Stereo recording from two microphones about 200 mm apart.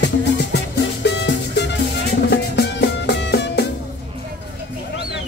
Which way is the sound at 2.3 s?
55° left (ahead or behind).